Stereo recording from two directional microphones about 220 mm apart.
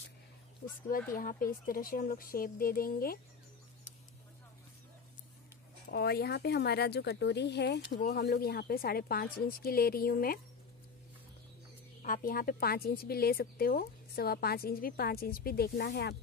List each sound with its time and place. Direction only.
1.1 s speech: 40° left (ahead or behind)
5.9 s speech: 45° left (ahead or behind)
12.0 s speech: 40° left (ahead or behind)